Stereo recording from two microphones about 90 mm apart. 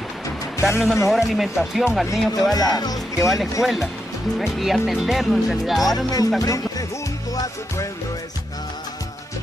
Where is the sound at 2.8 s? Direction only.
45° left (ahead or behind).